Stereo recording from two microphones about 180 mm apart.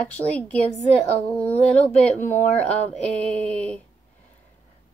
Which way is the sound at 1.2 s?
10° left (ahead or behind).